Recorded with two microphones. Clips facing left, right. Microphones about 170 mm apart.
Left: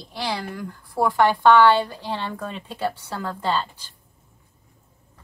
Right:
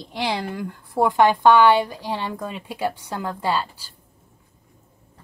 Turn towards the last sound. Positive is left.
turn(degrees=-10)  # may be behind; listen again after turning